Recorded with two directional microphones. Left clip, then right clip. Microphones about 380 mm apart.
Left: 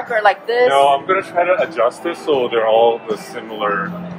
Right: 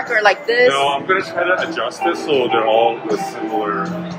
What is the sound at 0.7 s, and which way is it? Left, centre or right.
A man's voice, centre.